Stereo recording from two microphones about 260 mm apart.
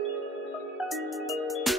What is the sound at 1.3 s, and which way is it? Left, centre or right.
Music, centre.